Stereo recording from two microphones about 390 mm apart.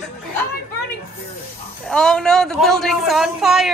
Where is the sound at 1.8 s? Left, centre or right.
Centre.